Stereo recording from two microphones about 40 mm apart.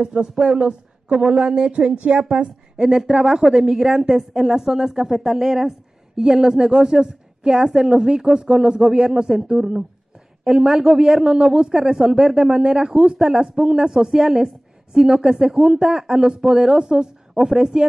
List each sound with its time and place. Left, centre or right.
0.0 s speech: right
2.4 s a woman's voice: centre